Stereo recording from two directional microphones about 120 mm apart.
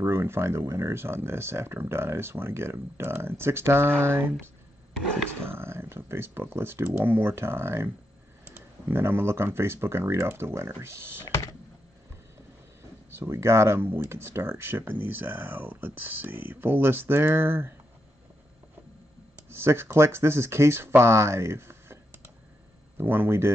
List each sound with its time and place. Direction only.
0.0 s speech: 20° right (ahead or behind)
5.5 s speech: 20° right (ahead or behind)
13.2 s speech: 20° right (ahead or behind)
19.6 s speech: 20° right (ahead or behind)